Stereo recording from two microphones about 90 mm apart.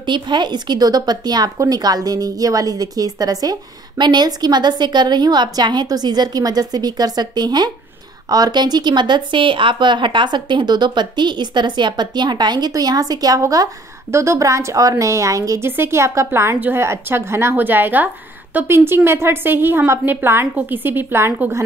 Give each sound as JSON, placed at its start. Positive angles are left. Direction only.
{"t": 0.0, "sound": "a woman's voice", "side_deg": -60}
{"t": 15.6, "sound": "a woman's voice", "side_deg": -25}
{"t": 16.5, "sound": "a woman's voice", "side_deg": -20}
{"t": 16.8, "sound": "a woman's voice", "side_deg": -30}